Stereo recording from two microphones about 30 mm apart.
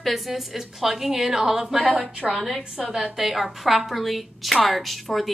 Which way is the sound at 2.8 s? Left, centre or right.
Centre.